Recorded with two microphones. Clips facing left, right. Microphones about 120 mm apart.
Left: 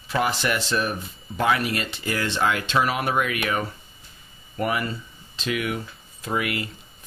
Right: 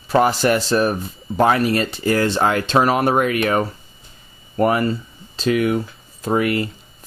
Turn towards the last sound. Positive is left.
turn(degrees=-40)  # may be behind; listen again after turning